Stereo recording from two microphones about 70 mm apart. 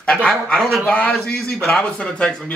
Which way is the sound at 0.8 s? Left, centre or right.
Left.